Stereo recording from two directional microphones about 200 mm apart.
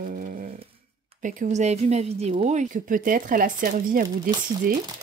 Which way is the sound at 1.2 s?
35° right (ahead or behind).